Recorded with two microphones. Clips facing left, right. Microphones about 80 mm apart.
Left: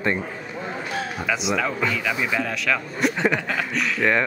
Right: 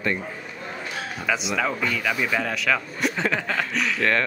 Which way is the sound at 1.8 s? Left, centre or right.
Centre.